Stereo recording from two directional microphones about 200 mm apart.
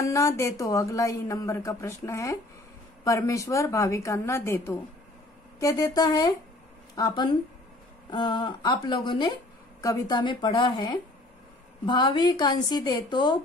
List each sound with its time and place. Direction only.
0.0 s a woman's voice: 15° left (ahead or behind)